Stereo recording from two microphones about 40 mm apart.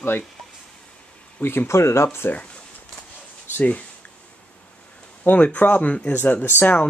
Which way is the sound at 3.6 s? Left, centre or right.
Left.